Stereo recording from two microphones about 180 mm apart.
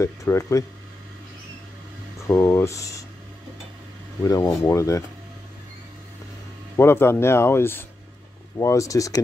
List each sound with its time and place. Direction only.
0.0 s speech: 15° left (ahead or behind)
2.2 s speech: 15° left (ahead or behind)
4.2 s speech: 20° left (ahead or behind)
6.8 s speech: 15° left (ahead or behind)